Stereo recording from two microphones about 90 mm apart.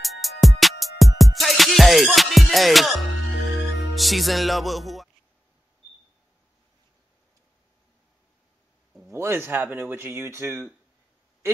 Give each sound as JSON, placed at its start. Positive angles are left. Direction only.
{"t": 0.0, "sound": "music", "side_deg": 0}
{"t": 3.4, "sound": "speech", "side_deg": 0}
{"t": 9.1, "sound": "speech", "side_deg": -30}